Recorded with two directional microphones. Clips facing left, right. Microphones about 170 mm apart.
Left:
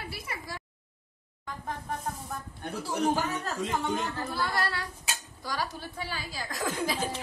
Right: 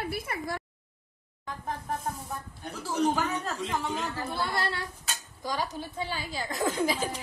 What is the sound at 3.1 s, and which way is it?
Speech, centre (ahead or behind).